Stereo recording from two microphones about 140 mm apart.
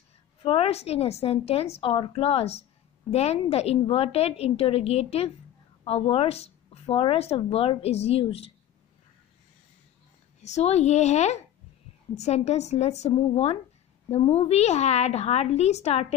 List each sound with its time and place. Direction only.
0.4 s speech: 40° left (ahead or behind)
10.4 s speech: 50° left (ahead or behind)